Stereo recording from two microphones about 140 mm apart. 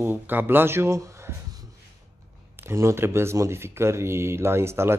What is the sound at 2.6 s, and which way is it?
Speech, 20° right (ahead or behind).